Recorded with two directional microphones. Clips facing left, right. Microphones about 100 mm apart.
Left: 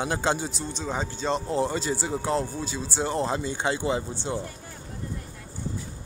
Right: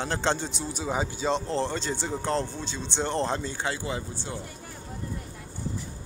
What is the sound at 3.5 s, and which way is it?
Speech, 20° left (ahead or behind).